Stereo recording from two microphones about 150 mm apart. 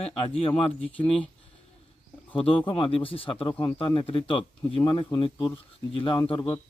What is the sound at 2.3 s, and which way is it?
Speech, 35° left (ahead or behind).